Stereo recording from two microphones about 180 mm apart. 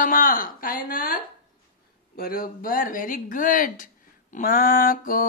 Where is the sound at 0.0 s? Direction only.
50° left (ahead or behind).